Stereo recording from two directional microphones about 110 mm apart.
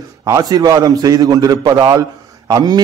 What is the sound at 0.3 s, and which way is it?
A man's voice, 35° right (ahead or behind).